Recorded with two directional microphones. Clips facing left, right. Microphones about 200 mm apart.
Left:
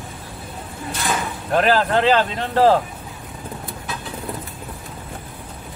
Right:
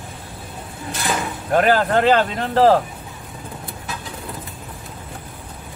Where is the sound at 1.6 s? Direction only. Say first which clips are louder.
Right 1 dB; 50° right (ahead or behind).